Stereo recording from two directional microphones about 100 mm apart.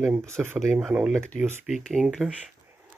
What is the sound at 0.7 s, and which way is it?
Speech, 10° right (ahead or behind).